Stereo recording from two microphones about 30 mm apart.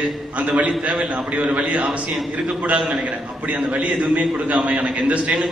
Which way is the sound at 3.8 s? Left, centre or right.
Right.